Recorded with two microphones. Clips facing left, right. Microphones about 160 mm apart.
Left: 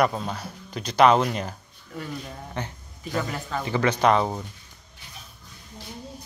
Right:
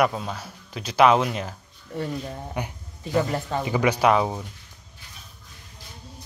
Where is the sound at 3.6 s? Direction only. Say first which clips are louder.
Even; 10° right (ahead or behind).